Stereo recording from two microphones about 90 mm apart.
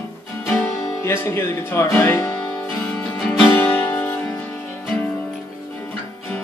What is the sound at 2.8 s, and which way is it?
Music, 15° left (ahead or behind).